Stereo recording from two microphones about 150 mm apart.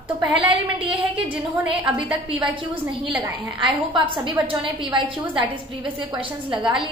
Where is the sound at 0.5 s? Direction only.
35° right (ahead or behind).